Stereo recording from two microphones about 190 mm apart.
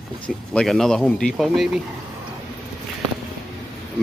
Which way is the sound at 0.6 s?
Centre (ahead or behind).